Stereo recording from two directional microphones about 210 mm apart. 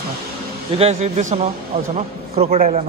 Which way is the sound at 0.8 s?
30° right (ahead or behind).